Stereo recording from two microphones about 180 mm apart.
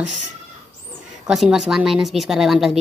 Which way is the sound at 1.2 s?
5° right (ahead or behind).